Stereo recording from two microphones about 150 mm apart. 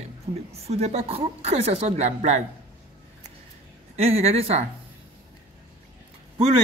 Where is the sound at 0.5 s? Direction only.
45° right (ahead or behind).